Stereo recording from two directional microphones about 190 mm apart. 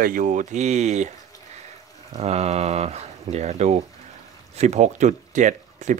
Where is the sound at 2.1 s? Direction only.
35° right (ahead or behind).